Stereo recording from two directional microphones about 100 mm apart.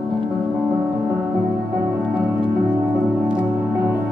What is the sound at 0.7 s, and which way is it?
Music, 20° right (ahead or behind).